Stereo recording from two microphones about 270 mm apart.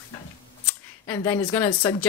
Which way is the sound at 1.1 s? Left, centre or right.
Centre.